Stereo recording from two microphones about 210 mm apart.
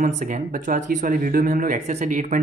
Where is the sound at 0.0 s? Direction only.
40° right (ahead or behind).